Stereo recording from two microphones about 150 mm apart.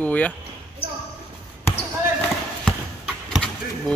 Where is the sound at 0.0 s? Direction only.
10° left (ahead or behind).